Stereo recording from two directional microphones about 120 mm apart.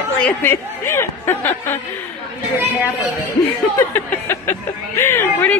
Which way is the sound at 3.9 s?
20° left (ahead or behind).